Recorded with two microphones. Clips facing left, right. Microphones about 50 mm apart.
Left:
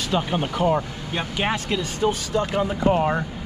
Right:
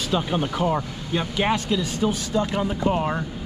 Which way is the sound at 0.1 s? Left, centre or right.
Left.